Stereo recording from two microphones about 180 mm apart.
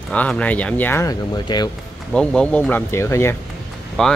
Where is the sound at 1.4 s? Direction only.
25° left (ahead or behind).